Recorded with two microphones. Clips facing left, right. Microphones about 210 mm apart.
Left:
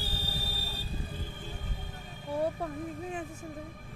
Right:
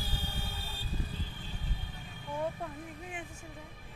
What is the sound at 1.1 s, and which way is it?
Music, 50° left (ahead or behind).